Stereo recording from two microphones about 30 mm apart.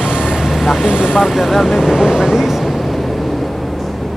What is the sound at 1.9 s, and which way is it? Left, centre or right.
Speech, centre.